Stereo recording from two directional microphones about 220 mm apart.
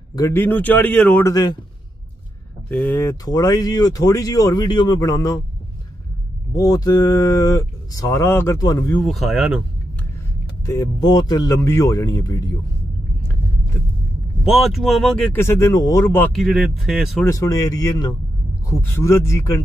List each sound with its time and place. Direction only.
0.1 s speech: 15° left (ahead or behind)
2.7 s speech: 5° left (ahead or behind)
6.5 s speech: 15° left (ahead or behind)
9.0 s speech: centre (ahead or behind)
10.6 s speech: 15° left (ahead or behind)
14.4 s speech: centre (ahead or behind)
16.4 s speech: centre (ahead or behind)
17.2 s speech: 15° left (ahead or behind)